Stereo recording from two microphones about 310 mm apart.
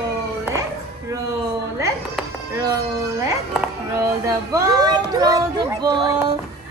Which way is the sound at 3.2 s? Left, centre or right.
Centre.